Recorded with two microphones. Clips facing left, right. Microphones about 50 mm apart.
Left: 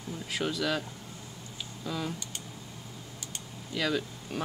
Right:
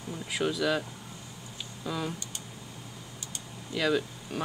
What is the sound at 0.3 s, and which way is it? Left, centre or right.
Speech, centre.